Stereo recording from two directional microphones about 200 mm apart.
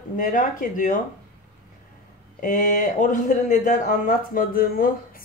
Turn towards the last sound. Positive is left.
turn(degrees=45)  # may be behind; listen again after turning